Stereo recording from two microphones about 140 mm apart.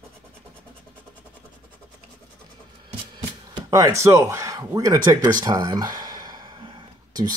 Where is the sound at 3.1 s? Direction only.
30° right (ahead or behind).